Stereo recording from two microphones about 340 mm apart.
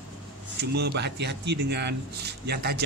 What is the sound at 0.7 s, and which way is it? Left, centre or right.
Speech, right.